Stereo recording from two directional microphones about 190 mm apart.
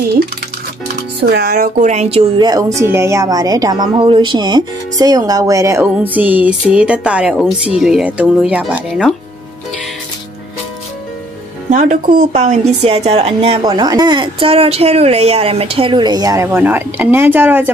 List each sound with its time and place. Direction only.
1.2 s speech: 55° right (ahead or behind); by 9.1 s 5° right (ahead or behind)
11.7 s a woman's voice: 45° right (ahead or behind); by 17.6 s 10° right (ahead or behind)